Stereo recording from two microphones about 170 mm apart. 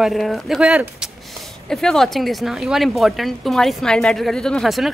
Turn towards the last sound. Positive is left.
turn(degrees=0)  # may be behind; listen again after turning